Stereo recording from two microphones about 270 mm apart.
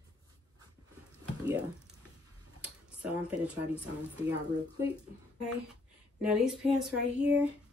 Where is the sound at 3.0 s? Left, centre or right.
Centre.